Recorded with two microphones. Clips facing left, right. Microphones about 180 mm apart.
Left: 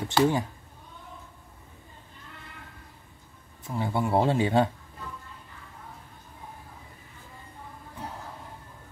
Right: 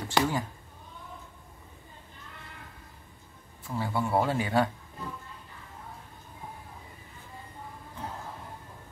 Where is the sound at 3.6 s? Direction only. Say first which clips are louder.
Left 2 dB; 20° left (ahead or behind).